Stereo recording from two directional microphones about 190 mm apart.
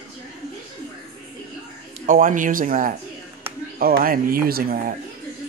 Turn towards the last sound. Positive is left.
turn(degrees=-50)  # may be behind; listen again after turning